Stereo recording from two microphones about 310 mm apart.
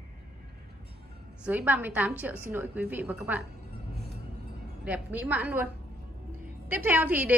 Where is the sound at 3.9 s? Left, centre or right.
Right.